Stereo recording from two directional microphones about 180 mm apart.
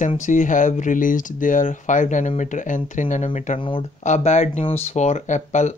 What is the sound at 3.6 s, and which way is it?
Speech, 30° left (ahead or behind).